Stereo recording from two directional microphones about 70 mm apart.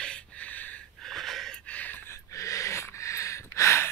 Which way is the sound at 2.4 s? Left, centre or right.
Left.